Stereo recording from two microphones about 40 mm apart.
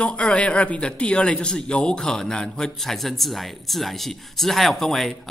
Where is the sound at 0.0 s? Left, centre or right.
Left.